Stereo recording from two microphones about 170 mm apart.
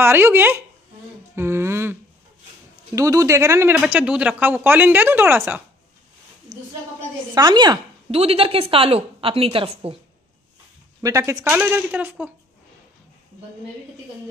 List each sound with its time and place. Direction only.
0.0 s speech: 15° right (ahead or behind)
1.3 s a sound: 15° right (ahead or behind)
3.0 s speech: 20° right (ahead or behind)
6.5 s a woman's voice: 25° right (ahead or behind)
11.0 s speech: 20° right (ahead or behind)